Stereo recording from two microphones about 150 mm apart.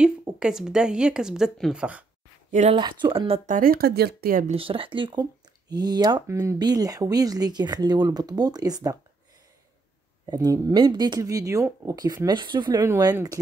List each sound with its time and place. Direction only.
0.4 s speech: 5° right (ahead or behind)
2.7 s speech: 35° right (ahead or behind)
3.5 s speech: 80° right
4.5 s speech: 35° right (ahead or behind)
10.2 s speech: 25° right (ahead or behind)
12.8 s speech: 20° right (ahead or behind)